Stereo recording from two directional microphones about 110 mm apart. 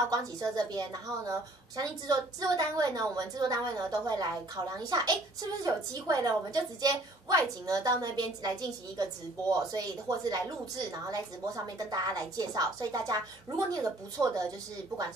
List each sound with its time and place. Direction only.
0.1 s a woman's voice: 35° right (ahead or behind)